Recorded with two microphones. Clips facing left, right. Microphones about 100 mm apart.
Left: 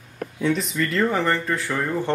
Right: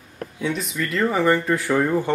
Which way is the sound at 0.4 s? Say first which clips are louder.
Left 3 dB; centre (ahead or behind).